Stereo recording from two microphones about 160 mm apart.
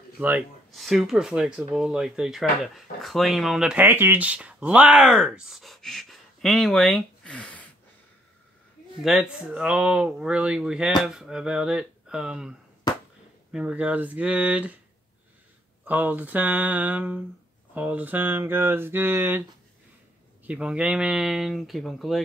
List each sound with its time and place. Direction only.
0.2 s speech: 10° right (ahead or behind)
0.7 s speech: centre (ahead or behind)
9.0 s speech: 5° right (ahead or behind)
15.8 s speech: 10° right (ahead or behind)
20.4 s speech: 5° right (ahead or behind)